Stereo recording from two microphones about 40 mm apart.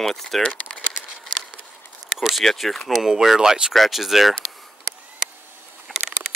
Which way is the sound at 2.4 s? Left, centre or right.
Centre.